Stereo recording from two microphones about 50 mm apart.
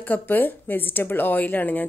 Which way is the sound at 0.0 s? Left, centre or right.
Left.